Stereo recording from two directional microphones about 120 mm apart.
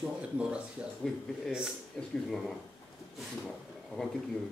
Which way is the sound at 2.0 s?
5° left (ahead or behind).